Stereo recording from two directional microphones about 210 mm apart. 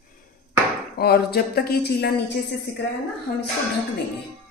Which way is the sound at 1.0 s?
50° left (ahead or behind).